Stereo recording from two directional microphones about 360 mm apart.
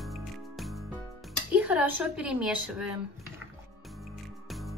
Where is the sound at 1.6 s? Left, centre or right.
Centre.